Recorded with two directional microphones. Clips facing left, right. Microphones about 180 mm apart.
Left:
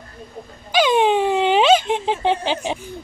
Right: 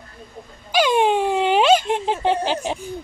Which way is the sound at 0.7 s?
10° right (ahead or behind).